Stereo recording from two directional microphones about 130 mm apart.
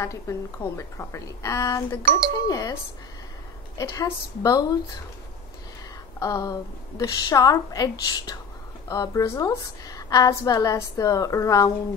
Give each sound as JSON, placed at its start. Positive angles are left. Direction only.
{"t": 0.0, "sound": "a woman's voice", "side_deg": 20}
{"t": 6.1, "sound": "a woman's voice", "side_deg": 30}